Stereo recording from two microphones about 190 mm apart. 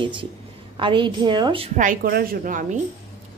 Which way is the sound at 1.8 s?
50° right (ahead or behind).